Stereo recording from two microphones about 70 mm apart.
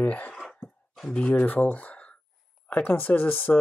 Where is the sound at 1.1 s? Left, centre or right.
Left.